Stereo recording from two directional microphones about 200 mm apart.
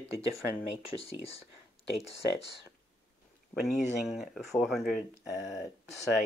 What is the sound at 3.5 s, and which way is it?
Speech, centre (ahead or behind).